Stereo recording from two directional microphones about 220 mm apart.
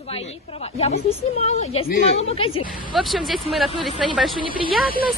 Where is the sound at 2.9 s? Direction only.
Centre (ahead or behind).